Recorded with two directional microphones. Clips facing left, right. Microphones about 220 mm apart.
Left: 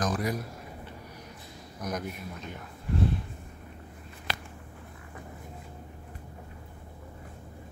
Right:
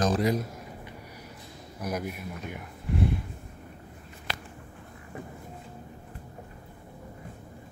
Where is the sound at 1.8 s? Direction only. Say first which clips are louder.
Right 2 dB; 10° right (ahead or behind).